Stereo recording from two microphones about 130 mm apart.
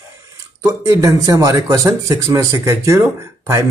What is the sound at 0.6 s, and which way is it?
Speech, 25° right (ahead or behind).